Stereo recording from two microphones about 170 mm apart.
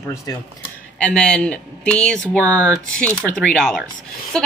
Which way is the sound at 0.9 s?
5° left (ahead or behind).